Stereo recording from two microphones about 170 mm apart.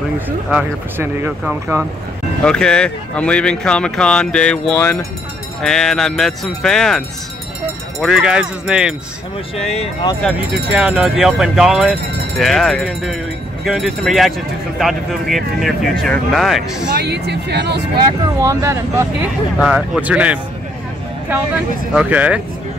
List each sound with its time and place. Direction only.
0.5 s speech: 10° right (ahead or behind)
2.4 s speech: 5° left (ahead or behind)
8.0 s speech: 5° right (ahead or behind)
9.6 s speech: 40° left (ahead or behind)
10.7 s speech: 5° right (ahead or behind)
16.9 s speech: 75° right (ahead or behind)
18.4 s speech: 20° right (ahead or behind)
19.6 s speech: 5° right (ahead or behind)
21.9 s speech: 10° right (ahead or behind)